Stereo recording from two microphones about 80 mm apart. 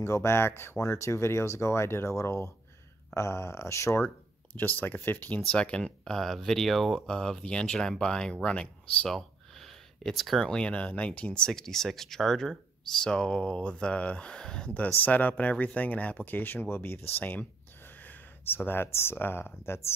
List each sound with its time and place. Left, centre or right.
0.0 s speech: left
4.6 s speech: left